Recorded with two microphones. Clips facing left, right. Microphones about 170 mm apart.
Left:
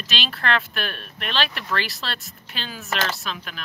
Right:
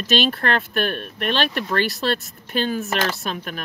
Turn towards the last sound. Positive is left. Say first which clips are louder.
# right 5 dB
turn(degrees=-50)  # may be behind; listen again after turning